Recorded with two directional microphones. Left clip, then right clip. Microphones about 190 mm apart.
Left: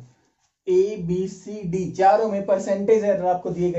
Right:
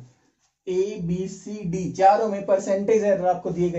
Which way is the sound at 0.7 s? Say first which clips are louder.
Left 5 dB; 20° left (ahead or behind).